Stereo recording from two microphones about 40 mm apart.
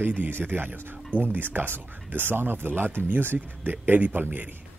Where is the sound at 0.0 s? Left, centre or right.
Right.